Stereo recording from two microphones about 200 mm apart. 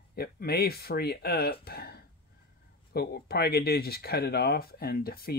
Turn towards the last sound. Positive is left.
turn(degrees=50)  # may be behind; listen again after turning